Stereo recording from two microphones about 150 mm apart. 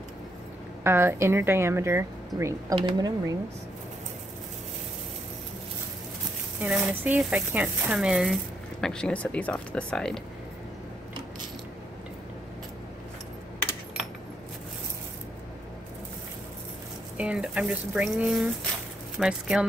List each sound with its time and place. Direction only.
0.8 s speech: 15° right (ahead or behind)
2.7 s speech: 30° right (ahead or behind)
6.6 s speech: 10° right (ahead or behind)
17.2 s speech: 5° right (ahead or behind)